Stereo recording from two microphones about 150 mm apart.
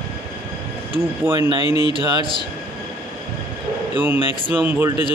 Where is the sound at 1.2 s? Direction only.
15° right (ahead or behind).